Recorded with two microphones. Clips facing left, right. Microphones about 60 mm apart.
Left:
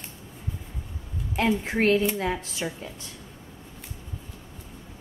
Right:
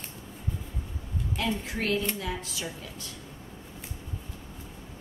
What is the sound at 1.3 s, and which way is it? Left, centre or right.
A woman's voice, left.